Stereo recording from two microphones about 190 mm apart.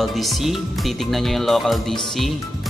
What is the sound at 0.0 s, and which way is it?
Speech, centre (ahead or behind).